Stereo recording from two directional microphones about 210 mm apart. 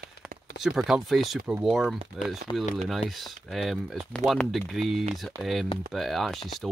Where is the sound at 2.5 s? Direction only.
20° left (ahead or behind).